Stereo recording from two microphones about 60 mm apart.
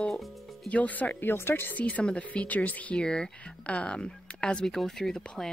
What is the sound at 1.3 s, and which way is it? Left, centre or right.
Speech, left.